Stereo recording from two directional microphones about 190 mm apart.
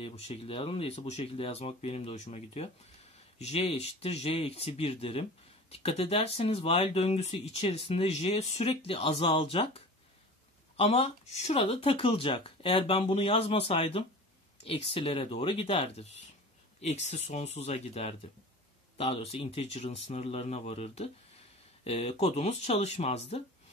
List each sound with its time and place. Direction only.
0.0 s speech: 30° left (ahead or behind)